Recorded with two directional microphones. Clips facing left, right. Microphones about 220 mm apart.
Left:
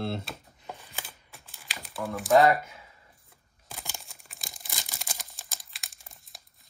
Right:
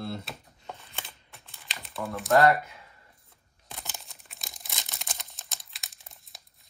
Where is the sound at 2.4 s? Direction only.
Centre (ahead or behind).